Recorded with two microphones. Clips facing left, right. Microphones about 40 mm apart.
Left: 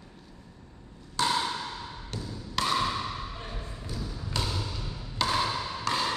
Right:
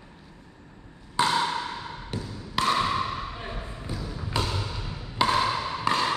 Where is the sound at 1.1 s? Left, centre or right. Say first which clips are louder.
Right 4 dB; right.